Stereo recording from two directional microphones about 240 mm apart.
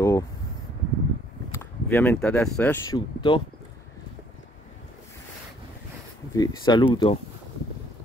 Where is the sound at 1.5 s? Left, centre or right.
Centre.